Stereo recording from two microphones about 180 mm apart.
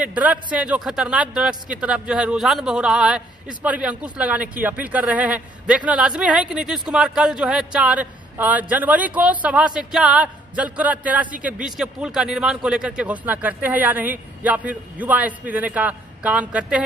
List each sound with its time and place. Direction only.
0.0 s a man's voice: 10° right (ahead or behind)